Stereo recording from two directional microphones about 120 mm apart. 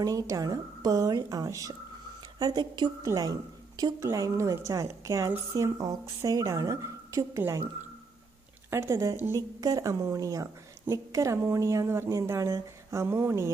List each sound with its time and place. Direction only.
0.0 s a woman's voice: 30° right (ahead or behind)
8.6 s a woman's voice: 20° right (ahead or behind)